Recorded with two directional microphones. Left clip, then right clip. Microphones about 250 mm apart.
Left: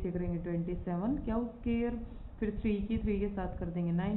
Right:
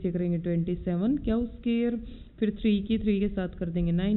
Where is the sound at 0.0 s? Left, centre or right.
Right.